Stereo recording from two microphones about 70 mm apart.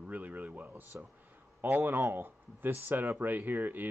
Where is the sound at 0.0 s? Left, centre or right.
Right.